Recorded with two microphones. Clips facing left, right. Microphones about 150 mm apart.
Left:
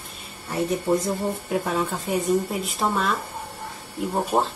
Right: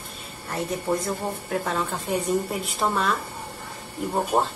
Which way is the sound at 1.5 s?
5° left (ahead or behind).